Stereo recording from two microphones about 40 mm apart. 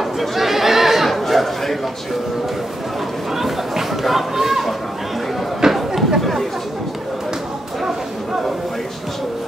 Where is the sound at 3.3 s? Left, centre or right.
Centre.